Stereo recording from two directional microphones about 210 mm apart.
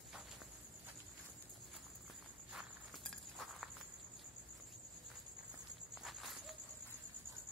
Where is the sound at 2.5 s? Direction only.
Centre (ahead or behind).